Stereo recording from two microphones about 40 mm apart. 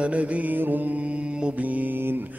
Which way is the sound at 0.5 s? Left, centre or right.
Right.